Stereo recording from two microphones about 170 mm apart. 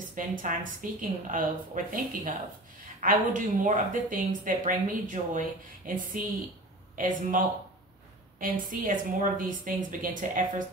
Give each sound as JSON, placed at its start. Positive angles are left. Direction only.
{"t": 0.1, "sound": "speech", "side_deg": -50}